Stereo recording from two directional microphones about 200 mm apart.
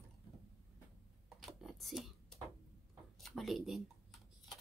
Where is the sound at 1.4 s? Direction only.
Centre (ahead or behind).